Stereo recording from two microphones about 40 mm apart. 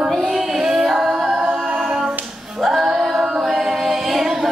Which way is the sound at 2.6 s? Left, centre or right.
Centre.